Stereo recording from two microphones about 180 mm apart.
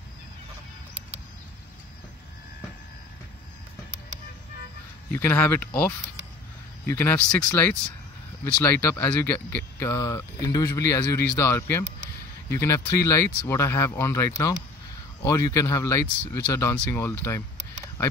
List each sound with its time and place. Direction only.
5.1 s speech: 10° left (ahead or behind)